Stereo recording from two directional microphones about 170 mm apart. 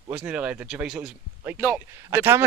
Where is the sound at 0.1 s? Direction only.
10° right (ahead or behind).